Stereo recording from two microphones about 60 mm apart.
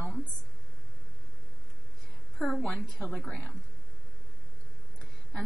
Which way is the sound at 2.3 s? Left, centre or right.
Centre.